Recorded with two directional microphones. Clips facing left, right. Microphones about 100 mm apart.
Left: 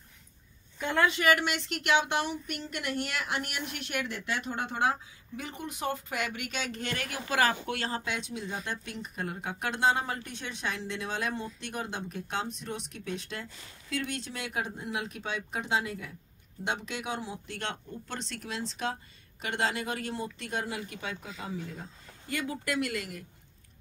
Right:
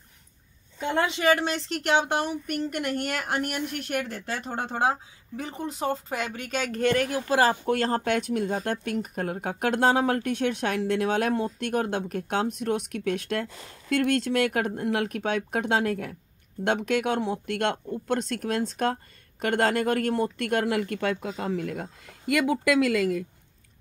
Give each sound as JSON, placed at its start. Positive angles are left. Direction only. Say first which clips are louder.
{"t": 0.7, "sound": "speech", "louder": "right 1 dB", "side_deg": -25}
{"t": 7.2, "sound": "speech", "louder": "right 3 dB", "side_deg": -35}